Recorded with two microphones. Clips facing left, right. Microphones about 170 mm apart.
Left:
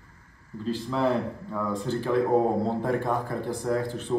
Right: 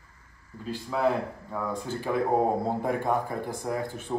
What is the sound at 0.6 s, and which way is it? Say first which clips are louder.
A man's voice: left 1 dB; 5° right (ahead or behind).